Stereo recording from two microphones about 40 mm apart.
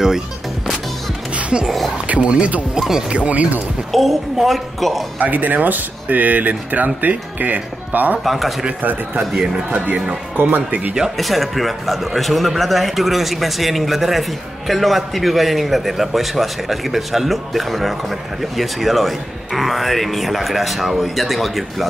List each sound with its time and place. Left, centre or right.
1.3 s music: right
2.0 s speech: right
2.9 s speech: centre
3.2 s speech: right
3.9 s speech: centre
5.2 s speech: right
8.2 s speech: centre
10.0 s speech: right
11.1 s speech: centre